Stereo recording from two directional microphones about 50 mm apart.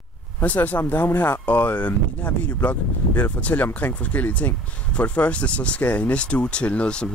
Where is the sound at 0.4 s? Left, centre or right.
Left.